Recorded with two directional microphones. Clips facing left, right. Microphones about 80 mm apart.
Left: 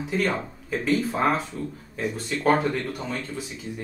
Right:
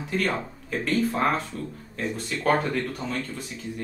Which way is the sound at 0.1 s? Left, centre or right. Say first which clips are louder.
Left 1 dB; centre.